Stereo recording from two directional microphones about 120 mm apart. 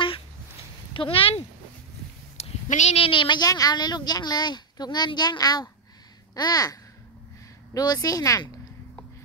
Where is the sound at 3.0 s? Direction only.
45° left (ahead or behind).